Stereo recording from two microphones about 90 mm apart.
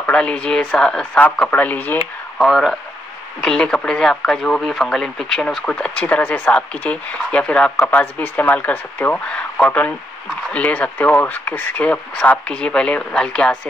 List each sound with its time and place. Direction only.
0.0 s speech: 10° left (ahead or behind)
2.3 s speech: centre (ahead or behind)